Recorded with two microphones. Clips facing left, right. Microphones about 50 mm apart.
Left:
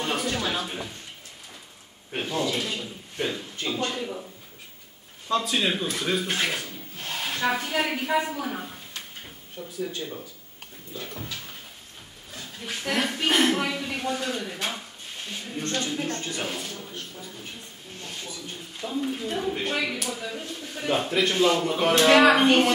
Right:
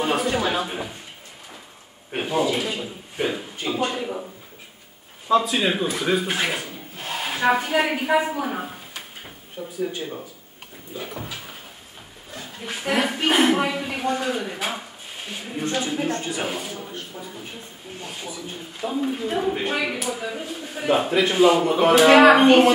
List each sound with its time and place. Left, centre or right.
0.0 s a sound: centre
2.1 s speech: centre
5.3 s speech: centre